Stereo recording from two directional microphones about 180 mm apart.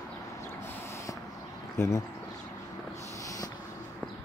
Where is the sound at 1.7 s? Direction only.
15° left (ahead or behind).